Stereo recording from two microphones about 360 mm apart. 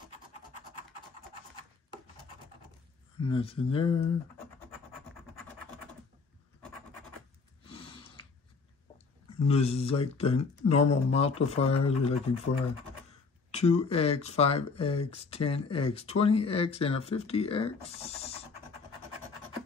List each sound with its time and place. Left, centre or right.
3.3 s speech: centre
7.6 s snort: centre
9.5 s speech: centre
13.5 s speech: centre